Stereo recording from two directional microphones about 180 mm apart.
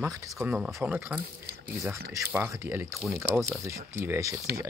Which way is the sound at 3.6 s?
15° right (ahead or behind).